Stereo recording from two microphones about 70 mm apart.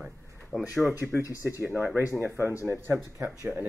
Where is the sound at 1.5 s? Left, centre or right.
Right.